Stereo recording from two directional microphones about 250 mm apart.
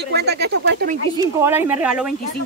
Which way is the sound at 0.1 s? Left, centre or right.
Right.